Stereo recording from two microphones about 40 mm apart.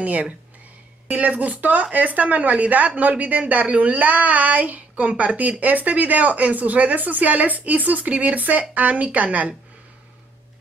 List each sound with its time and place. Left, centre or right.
0.0 s speech: right